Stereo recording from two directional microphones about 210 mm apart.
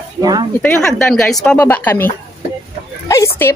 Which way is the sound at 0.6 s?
5° left (ahead or behind).